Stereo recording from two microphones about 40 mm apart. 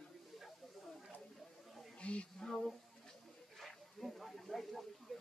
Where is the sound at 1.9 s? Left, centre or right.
Left.